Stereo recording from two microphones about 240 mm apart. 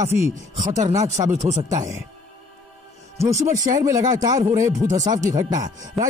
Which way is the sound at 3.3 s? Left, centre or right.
Right.